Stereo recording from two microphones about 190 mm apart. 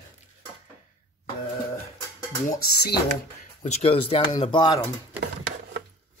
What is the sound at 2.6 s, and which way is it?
Speech, 55° left (ahead or behind).